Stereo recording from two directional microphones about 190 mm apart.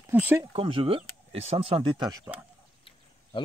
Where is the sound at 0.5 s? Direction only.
30° right (ahead or behind).